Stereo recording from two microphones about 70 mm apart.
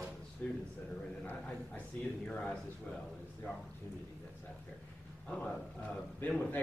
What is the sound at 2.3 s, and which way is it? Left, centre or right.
Speech, centre.